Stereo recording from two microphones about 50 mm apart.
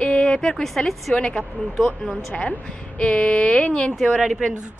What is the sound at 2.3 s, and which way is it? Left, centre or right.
A woman's voice, left.